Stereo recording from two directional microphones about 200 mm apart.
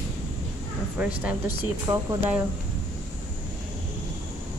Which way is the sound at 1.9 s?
15° right (ahead or behind).